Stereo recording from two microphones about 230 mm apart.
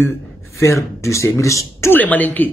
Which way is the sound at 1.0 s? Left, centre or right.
Centre.